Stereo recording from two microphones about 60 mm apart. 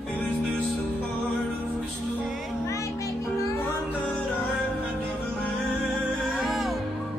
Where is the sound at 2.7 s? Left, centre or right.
Left.